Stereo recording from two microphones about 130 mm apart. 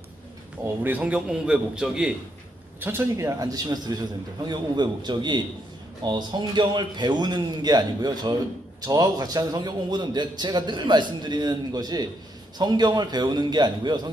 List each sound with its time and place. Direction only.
0.8 s a man's voice: 10° right (ahead or behind)
2.8 s a man's voice: 15° right (ahead or behind); by 14.1 s 35° right (ahead or behind)